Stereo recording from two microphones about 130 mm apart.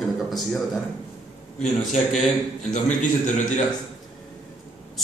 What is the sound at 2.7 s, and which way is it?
Speech, 75° left (ahead or behind).